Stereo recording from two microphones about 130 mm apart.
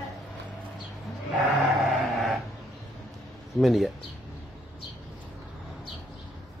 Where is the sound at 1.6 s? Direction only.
Centre (ahead or behind).